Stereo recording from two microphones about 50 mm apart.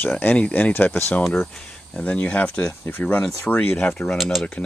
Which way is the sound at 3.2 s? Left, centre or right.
Centre.